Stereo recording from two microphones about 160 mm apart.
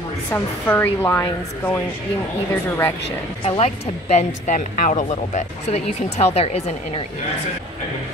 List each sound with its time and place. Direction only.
0.3 s speech: 10° left (ahead or behind)
3.4 s speech: 40° left (ahead or behind)